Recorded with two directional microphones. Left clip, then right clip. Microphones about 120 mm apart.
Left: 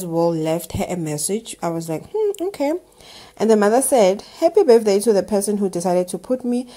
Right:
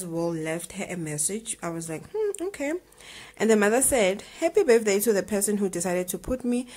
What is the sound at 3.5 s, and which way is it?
Speech, 20° right (ahead or behind).